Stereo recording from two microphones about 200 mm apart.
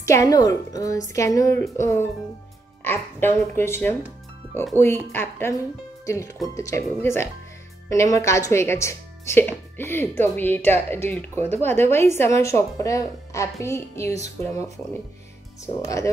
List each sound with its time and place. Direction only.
0.0 s speech: 15° left (ahead or behind)